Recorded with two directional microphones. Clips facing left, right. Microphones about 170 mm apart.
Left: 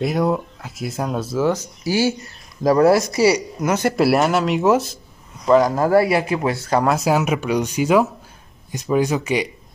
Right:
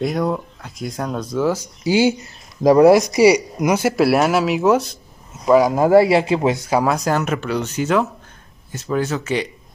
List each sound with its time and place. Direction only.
0.0 s speech: 5° left (ahead or behind)
1.5 s speech: 15° right (ahead or behind)
5.9 s speech: 25° right (ahead or behind)
6.7 s speech: centre (ahead or behind)